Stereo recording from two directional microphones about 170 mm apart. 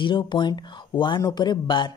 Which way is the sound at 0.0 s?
25° left (ahead or behind).